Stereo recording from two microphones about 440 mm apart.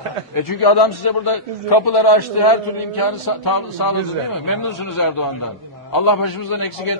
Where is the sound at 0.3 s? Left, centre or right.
Left.